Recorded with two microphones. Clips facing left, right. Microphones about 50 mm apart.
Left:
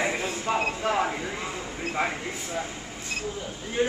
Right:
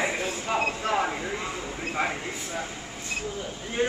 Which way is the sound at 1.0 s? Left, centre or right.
Centre.